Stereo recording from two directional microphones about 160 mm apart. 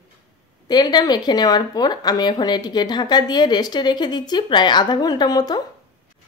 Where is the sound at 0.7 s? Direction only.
25° left (ahead or behind).